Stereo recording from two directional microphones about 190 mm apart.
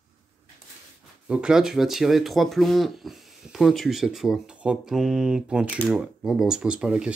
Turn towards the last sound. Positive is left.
turn(degrees=-5)  # may be behind; listen again after turning